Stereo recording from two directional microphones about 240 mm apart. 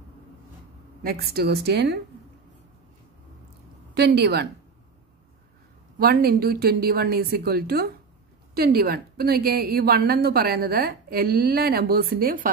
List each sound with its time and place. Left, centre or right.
1.0 s a woman's voice: right
3.9 s a woman's voice: right
5.9 s a woman's voice: right